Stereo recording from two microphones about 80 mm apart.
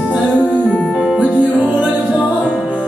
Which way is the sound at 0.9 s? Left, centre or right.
Centre.